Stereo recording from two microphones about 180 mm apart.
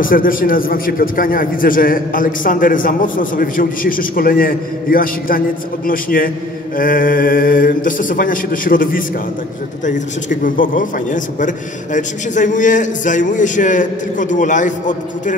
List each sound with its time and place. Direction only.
0.0 s a man's voice: 50° left (ahead or behind)